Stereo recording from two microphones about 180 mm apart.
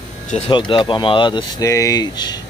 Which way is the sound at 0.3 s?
35° left (ahead or behind).